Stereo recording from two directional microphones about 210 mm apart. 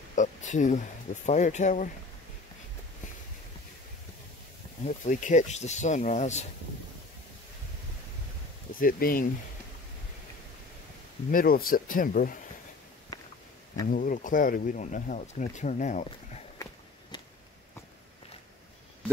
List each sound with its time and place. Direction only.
0.1 s speech: 35° left (ahead or behind)
4.8 s speech: 35° left (ahead or behind)
8.7 s speech: 45° left (ahead or behind)
11.3 s speech: 45° left (ahead or behind)
13.8 s speech: 40° left (ahead or behind)